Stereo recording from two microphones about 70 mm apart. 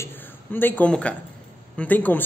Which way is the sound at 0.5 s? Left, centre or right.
Left.